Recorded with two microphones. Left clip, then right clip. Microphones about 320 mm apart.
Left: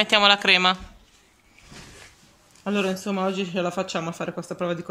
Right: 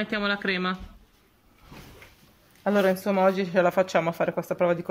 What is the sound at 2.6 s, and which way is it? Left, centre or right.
Speech, right.